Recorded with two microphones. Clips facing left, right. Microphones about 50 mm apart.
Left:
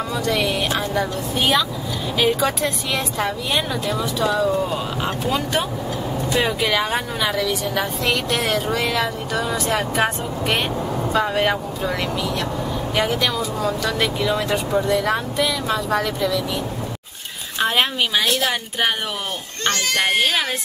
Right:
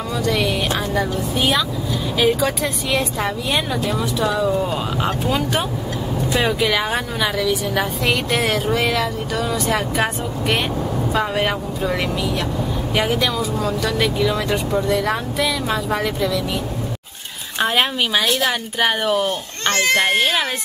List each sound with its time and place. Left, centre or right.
0.2 s a woman's voice: centre
17.6 s a woman's voice: centre
19.7 s a child's voice: right